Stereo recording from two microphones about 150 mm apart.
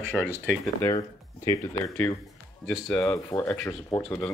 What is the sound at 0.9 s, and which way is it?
Speech, 25° left (ahead or behind).